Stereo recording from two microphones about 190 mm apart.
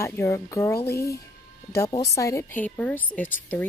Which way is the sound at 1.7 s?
15° left (ahead or behind).